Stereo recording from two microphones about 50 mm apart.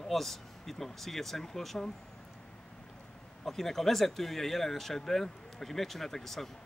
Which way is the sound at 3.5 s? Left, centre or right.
Centre.